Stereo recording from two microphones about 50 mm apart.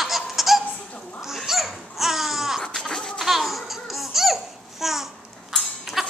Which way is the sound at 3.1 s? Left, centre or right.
Centre.